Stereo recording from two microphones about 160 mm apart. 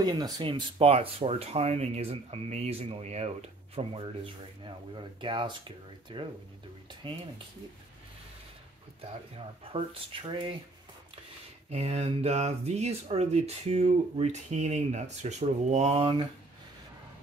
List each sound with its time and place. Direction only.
0.0 s speech: 25° right (ahead or behind)
9.7 s speech: 35° right (ahead or behind)
11.7 s speech: 40° right (ahead or behind)